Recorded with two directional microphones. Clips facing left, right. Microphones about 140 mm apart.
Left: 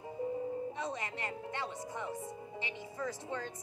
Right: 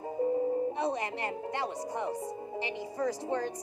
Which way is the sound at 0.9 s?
35° right (ahead or behind).